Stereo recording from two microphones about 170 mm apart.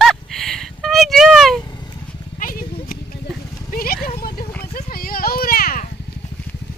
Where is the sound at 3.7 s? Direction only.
60° left (ahead or behind).